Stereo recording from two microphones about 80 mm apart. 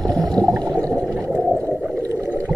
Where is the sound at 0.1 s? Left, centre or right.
Centre.